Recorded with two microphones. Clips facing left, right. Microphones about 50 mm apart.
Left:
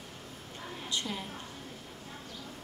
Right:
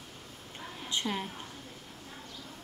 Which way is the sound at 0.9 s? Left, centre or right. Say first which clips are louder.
Right 3 dB; right.